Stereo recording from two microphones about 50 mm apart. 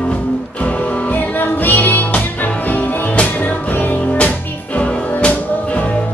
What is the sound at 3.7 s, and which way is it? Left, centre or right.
Music, left.